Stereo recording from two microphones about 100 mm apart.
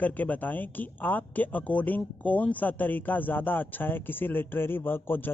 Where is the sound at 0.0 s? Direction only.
15° left (ahead or behind).